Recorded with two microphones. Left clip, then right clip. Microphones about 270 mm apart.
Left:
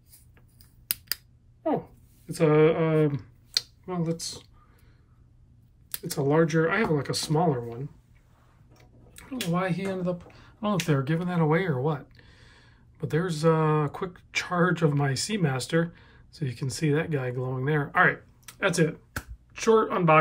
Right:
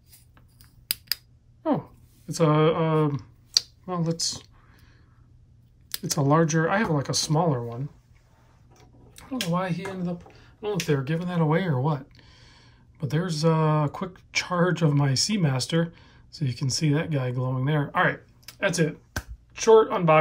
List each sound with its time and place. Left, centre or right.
0.8 s a sound: centre
2.3 s speech: centre
6.2 s speech: centre
9.1 s speech: centre
10.1 s speech: centre